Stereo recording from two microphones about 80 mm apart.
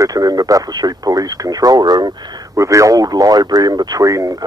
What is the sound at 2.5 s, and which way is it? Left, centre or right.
Speech, right.